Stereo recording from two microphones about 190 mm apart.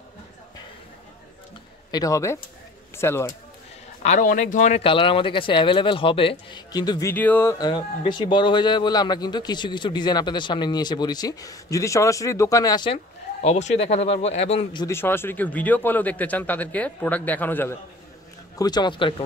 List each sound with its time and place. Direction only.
1.9 s speech: 20° left (ahead or behind)
4.0 s speech: 40° left (ahead or behind)
14.9 s speech: 10° left (ahead or behind)
18.6 s speech: 20° left (ahead or behind)